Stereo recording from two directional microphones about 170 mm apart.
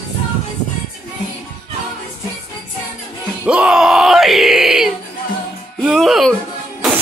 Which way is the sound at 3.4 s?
5° right (ahead or behind).